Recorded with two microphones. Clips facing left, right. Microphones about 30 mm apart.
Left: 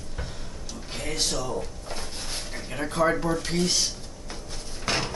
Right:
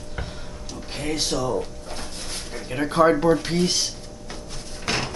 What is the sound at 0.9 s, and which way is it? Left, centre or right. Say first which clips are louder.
Speech: right 4 dB; centre.